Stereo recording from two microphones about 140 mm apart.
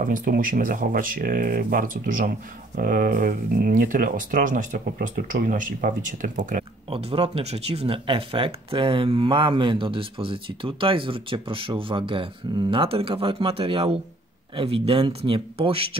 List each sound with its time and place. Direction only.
0.0 s speech: 75° right (ahead or behind)
2.8 s speech: 90° right
6.9 s speech: 45° right (ahead or behind)